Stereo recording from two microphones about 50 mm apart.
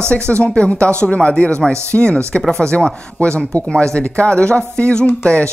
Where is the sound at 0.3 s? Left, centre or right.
Left.